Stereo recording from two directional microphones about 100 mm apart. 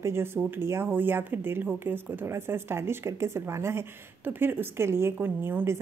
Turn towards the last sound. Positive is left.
turn(degrees=-25)  # may be behind; listen again after turning